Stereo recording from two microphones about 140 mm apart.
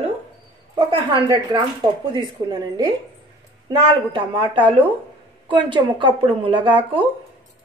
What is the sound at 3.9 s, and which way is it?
Speech, 35° right (ahead or behind).